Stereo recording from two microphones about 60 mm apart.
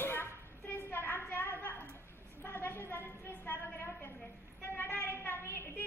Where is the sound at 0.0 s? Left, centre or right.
Left.